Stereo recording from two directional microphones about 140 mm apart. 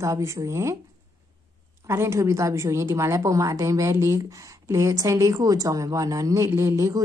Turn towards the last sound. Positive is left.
turn(degrees=-20)  # may be behind; listen again after turning